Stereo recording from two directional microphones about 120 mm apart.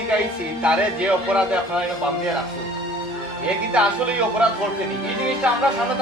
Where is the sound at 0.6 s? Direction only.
10° right (ahead or behind).